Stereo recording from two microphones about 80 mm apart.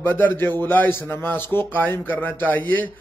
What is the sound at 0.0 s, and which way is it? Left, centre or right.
A man's voice, left.